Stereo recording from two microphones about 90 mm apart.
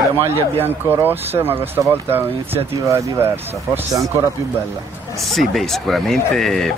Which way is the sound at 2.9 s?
30° right (ahead or behind).